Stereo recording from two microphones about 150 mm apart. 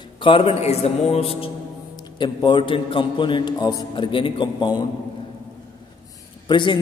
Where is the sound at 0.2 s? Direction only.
35° left (ahead or behind).